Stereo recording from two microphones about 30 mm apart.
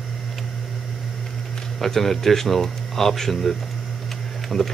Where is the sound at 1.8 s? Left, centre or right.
Centre.